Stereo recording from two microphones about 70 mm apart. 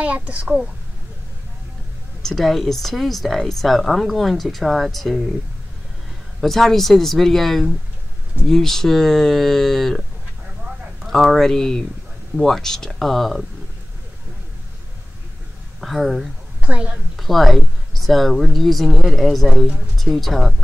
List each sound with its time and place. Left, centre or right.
0.0 s a child's voice: centre
2.2 s speech: centre
6.4 s speech: centre
11.1 s speech: centre
15.8 s speech: centre
16.6 s a woman's voice: centre
17.2 s speech: centre